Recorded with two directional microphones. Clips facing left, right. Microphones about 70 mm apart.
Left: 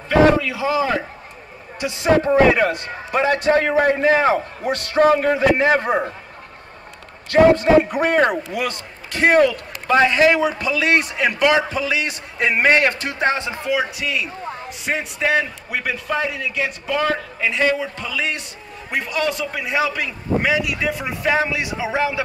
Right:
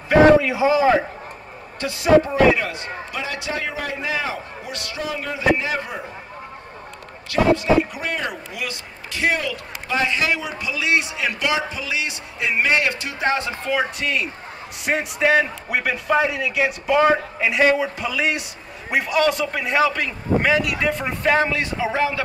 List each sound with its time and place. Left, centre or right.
0.1 s a man's voice: centre
1.8 s a woman's voice: left
2.5 s a man's voice: left
7.2 s a man's voice: left
13.2 s a woman's voice: left
13.9 s a man's voice: centre